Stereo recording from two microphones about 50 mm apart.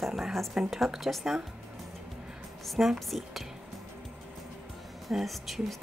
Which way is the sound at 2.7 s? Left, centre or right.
Centre.